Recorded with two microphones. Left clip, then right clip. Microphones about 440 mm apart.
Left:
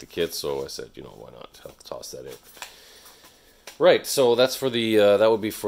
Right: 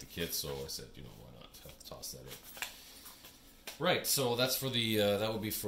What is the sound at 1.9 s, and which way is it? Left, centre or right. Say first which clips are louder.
Speech: left 14 dB; centre.